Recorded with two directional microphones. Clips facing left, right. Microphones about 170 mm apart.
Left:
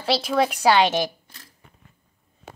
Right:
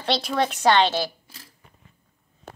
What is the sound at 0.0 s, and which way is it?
Speech, 5° left (ahead or behind).